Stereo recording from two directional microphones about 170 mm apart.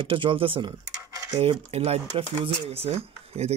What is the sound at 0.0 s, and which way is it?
Speech, 30° right (ahead or behind).